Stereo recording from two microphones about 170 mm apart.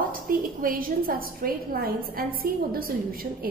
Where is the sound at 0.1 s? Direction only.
55° right (ahead or behind).